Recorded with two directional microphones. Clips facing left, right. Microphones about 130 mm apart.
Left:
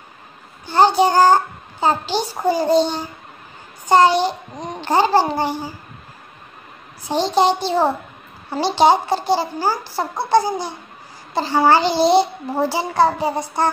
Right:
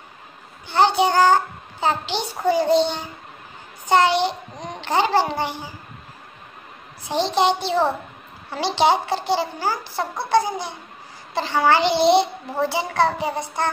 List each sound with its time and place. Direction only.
0.7 s a child's voice: 40° left (ahead or behind)
7.1 s a child's voice: 40° left (ahead or behind)